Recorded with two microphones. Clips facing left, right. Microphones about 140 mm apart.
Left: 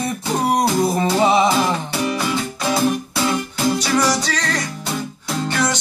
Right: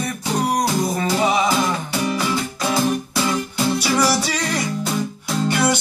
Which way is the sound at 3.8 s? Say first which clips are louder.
Even; 10° right (ahead or behind).